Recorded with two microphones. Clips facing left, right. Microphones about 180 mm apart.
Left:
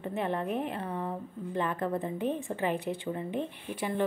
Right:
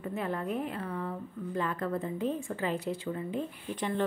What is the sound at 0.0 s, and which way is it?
A woman's voice, 20° left (ahead or behind).